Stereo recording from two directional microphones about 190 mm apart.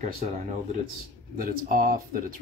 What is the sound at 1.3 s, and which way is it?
Speech, 50° right (ahead or behind).